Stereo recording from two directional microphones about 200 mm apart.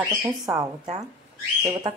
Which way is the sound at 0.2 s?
15° right (ahead or behind).